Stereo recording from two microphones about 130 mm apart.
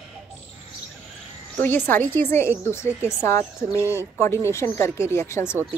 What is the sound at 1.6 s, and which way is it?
A woman's voice, 15° left (ahead or behind).